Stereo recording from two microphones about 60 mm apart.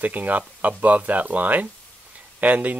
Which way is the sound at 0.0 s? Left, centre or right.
Right.